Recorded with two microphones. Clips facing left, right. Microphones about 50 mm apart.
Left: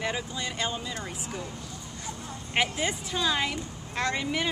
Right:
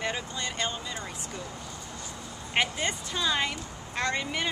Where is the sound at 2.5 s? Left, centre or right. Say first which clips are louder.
Left 1 dB; centre.